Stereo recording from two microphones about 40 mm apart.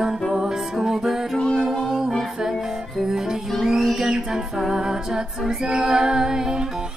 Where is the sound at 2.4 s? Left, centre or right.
Centre.